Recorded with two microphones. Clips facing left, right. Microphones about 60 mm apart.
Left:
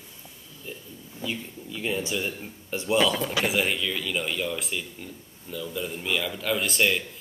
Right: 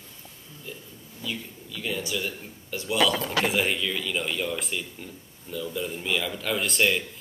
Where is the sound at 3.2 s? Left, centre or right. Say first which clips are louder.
Even; centre.